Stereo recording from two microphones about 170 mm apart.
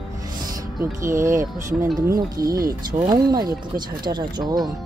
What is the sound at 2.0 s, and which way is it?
Speech, 60° right (ahead or behind).